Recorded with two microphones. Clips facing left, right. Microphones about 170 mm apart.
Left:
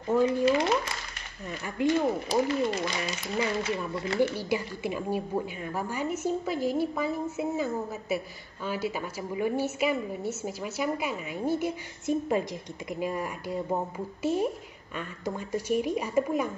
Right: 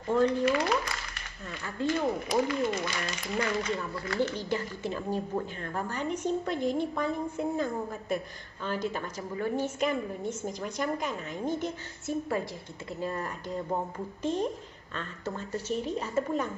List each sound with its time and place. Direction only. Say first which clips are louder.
0.1 s a woman's voice: left 1 dB; 5° left (ahead or behind)
0.5 s speech: left 3 dB; 20° left (ahead or behind)
1.8 s a woman's voice: left 4 dB; 15° left (ahead or behind)
2.2 s speech: left 2 dB; 30° left (ahead or behind)
3.3 s a woman's voice: left 1 dB; 10° left (ahead or behind)
3.9 s speech: left 3 dB; 25° left (ahead or behind)
4.2 s a woman's voice: left 3 dB; 10° left (ahead or behind)